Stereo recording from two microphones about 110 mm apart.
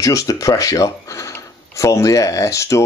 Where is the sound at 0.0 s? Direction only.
30° left (ahead or behind).